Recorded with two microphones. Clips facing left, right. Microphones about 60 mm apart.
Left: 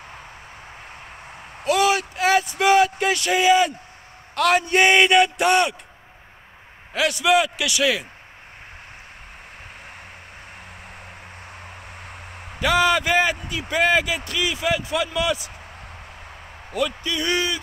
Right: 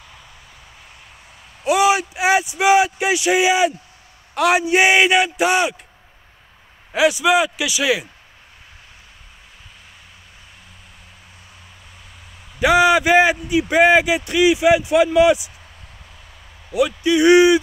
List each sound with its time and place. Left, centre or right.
1.7 s a man's voice: centre
6.9 s a man's voice: centre
11.6 s a sound: left
12.5 s a man's voice: centre
16.7 s a man's voice: centre